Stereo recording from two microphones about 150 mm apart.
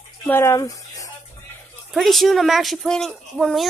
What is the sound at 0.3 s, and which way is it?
Speech, 20° left (ahead or behind).